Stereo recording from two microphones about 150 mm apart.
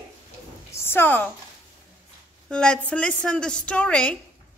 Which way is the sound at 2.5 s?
5° left (ahead or behind).